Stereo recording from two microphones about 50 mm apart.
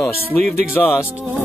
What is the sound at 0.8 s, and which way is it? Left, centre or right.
Speech, left.